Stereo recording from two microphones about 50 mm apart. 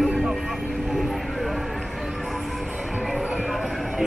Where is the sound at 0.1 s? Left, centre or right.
Centre.